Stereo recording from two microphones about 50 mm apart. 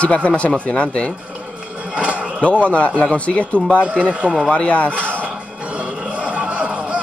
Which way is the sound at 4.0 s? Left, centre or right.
Right.